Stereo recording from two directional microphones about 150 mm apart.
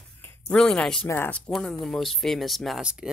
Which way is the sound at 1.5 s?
Centre (ahead or behind).